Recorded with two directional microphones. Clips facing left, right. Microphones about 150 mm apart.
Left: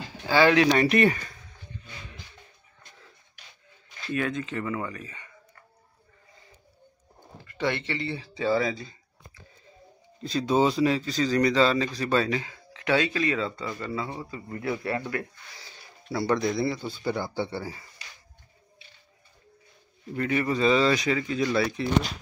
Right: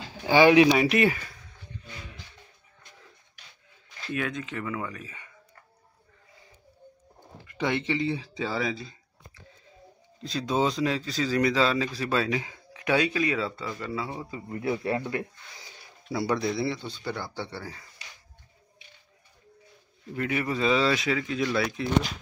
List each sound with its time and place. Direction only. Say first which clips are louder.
0.3 s speech: right 3 dB; 15° right (ahead or behind)
0.7 s speech: left 1 dB; 5° right (ahead or behind)
4.1 s speech: left 3 dB; centre (ahead or behind)
7.4 s speech: right 1 dB; 15° right (ahead or behind)
10.2 s speech: left 3 dB; centre (ahead or behind)
12.4 s speech: even; 15° right (ahead or behind)
14.3 s speech: right 3 dB; 20° right (ahead or behind); by 17.8 s 10° left (ahead or behind)
20.2 s speech: left 3 dB; 5° right (ahead or behind)